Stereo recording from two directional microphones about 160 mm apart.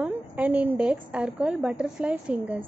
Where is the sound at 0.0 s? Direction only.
10° right (ahead or behind).